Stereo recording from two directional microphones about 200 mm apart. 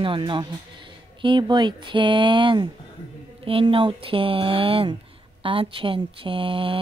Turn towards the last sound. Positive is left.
turn(degrees=-25)  # may be behind; listen again after turning